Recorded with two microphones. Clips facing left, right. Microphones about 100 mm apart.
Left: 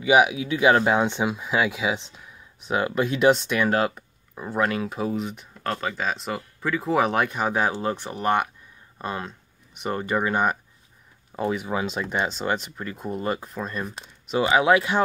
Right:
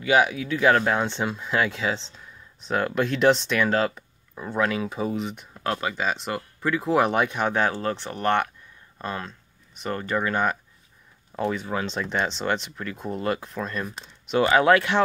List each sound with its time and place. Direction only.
0.0 s speech: 15° left (ahead or behind)